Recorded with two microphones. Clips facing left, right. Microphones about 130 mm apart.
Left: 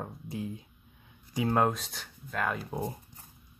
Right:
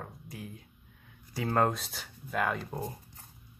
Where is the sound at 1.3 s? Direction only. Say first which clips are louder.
Left 1 dB; 10° left (ahead or behind).